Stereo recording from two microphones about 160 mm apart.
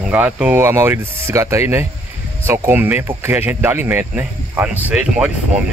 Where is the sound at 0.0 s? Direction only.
10° right (ahead or behind).